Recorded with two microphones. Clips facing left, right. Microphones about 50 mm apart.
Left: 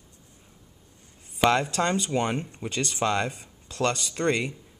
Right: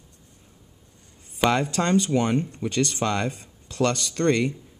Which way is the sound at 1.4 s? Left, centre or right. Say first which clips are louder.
Even; centre.